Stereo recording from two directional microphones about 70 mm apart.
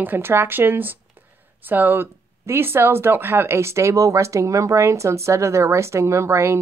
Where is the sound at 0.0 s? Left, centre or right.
Right.